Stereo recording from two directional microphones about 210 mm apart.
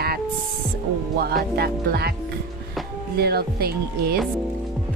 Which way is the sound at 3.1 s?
50° right (ahead or behind).